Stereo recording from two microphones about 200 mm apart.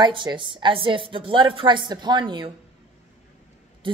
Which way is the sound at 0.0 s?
20° right (ahead or behind).